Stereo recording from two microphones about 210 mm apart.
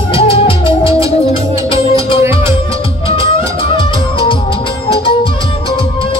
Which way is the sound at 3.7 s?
25° left (ahead or behind).